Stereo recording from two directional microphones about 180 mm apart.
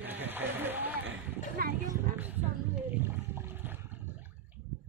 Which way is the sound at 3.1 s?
15° right (ahead or behind).